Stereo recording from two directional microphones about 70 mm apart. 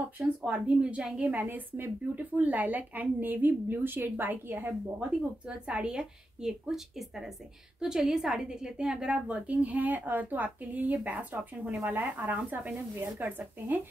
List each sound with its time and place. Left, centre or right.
0.2 s a woman's voice: centre
1.2 s a woman's voice: right
5.5 s a woman's voice: centre